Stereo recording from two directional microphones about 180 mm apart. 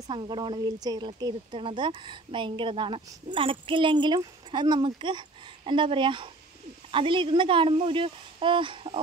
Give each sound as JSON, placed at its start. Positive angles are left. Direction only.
{"t": 0.0, "sound": "speech", "side_deg": -25}